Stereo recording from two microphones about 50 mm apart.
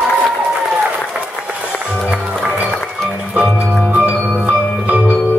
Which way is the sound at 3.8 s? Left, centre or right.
Right.